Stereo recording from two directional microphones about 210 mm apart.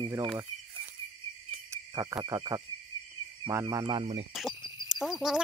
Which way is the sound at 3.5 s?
15° right (ahead or behind).